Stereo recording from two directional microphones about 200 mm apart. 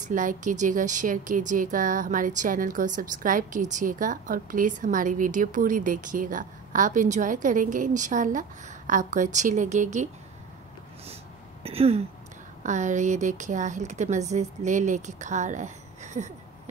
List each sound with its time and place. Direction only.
0.0 s speech: 40° right (ahead or behind)
11.6 s a sound: 30° right (ahead or behind)
12.6 s speech: 35° right (ahead or behind)